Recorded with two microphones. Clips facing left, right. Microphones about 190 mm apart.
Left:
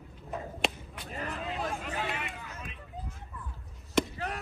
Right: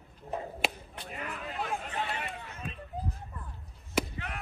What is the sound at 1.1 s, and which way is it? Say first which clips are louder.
Vehicle: left 3 dB; 35° left (ahead or behind).